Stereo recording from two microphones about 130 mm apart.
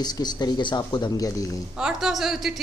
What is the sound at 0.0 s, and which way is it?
Speech, 30° left (ahead or behind).